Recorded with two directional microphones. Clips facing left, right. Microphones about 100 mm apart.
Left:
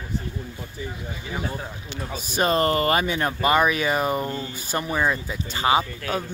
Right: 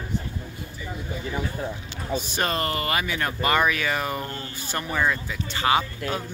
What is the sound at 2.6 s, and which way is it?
Speech, 35° left (ahead or behind).